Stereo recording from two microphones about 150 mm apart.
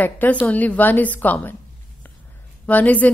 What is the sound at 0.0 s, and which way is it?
Speech, 10° left (ahead or behind).